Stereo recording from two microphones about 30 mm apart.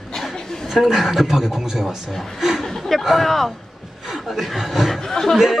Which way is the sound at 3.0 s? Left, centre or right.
Centre.